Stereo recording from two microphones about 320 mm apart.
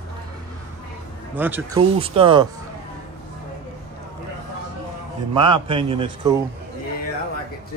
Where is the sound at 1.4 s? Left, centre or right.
Centre.